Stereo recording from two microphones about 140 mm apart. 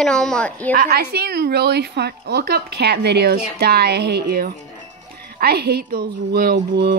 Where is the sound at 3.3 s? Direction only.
90° right.